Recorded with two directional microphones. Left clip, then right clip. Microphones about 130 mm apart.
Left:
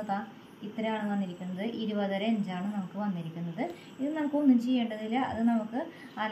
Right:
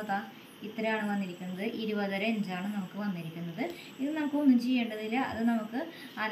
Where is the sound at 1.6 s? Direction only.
40° left (ahead or behind).